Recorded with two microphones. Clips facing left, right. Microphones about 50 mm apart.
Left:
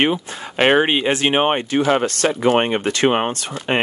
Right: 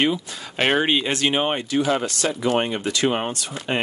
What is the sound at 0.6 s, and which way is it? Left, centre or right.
Speech, left.